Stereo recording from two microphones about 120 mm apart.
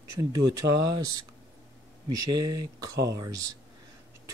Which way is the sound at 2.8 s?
30° right (ahead or behind).